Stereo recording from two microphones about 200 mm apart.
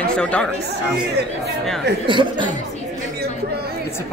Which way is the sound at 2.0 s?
25° right (ahead or behind).